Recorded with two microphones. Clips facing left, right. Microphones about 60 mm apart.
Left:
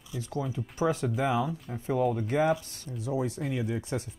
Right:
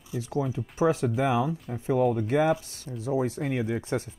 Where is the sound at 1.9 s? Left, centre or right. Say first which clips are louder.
Right 3 dB; right.